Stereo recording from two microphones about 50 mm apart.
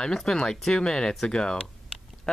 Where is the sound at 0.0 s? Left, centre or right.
Centre.